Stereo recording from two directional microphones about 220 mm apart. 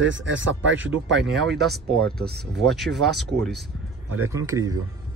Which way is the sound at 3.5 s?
60° right (ahead or behind).